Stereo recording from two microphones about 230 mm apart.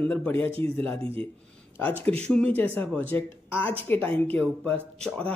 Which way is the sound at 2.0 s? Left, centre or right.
Centre.